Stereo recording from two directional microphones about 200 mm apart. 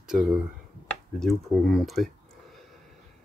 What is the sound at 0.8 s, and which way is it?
Speech, centre (ahead or behind).